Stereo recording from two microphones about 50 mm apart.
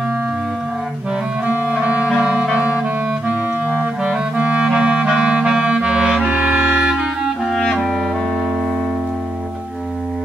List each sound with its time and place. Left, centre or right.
1.4 s music: right
4.0 s clarinet: right
6.2 s music: right